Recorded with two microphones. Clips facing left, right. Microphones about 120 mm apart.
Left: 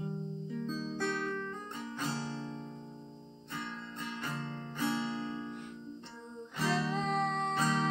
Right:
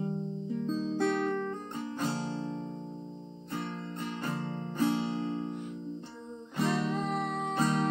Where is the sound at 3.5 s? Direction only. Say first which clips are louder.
Right 5 dB; 40° right (ahead or behind).